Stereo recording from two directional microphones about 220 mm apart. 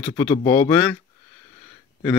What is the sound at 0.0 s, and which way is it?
Speech, 15° left (ahead or behind).